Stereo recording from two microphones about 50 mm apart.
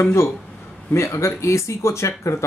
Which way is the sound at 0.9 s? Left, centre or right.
Left.